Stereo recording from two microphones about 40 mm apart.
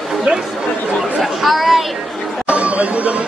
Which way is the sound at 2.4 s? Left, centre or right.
Right.